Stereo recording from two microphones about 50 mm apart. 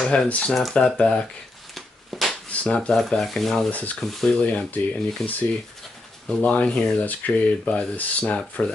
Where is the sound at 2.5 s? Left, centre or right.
Left.